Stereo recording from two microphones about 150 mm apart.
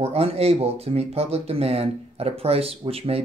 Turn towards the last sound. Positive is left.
turn(degrees=-40)  # may be behind; listen again after turning